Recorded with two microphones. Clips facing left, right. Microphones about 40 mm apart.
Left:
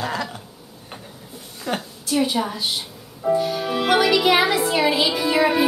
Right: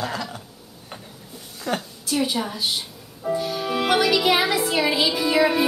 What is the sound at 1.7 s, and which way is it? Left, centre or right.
Speech, centre.